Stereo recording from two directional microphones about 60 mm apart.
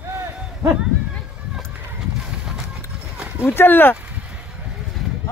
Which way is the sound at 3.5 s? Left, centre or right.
Left.